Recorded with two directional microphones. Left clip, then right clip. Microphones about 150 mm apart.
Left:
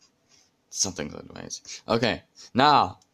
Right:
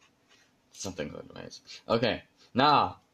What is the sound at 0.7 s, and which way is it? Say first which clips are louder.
Speech: left 7 dB; 35° left (ahead or behind).